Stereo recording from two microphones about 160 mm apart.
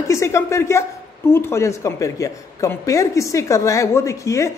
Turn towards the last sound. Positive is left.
turn(degrees=20)  # may be behind; listen again after turning